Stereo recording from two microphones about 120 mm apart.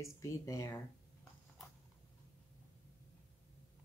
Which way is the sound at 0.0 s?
25° left (ahead or behind).